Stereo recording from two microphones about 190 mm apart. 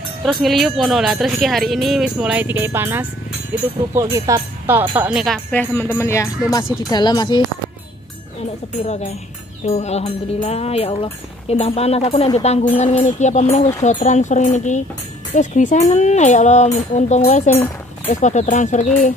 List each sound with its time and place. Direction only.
0.2 s speech: centre (ahead or behind); by 7.4 s 20° left (ahead or behind)
8.8 s speech: 35° left (ahead or behind)